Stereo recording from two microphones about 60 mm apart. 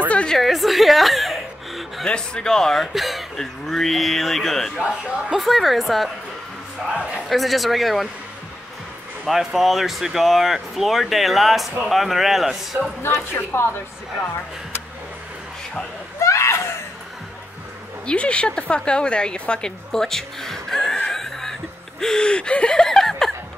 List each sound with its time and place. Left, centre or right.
0.3 s speech: centre
2.0 s speech: centre
4.7 s speech: centre
6.9 s speech: centre
7.2 s speech: centre
9.2 s speech: centre
13.0 s speech: left
16.2 s a sound: left
18.0 s a woman's voice: centre
22.0 s a sound: centre